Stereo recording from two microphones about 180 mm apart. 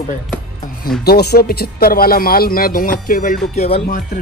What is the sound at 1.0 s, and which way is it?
Speech, 60° left (ahead or behind).